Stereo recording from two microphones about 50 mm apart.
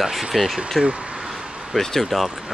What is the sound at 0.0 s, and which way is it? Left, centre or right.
Speech, centre.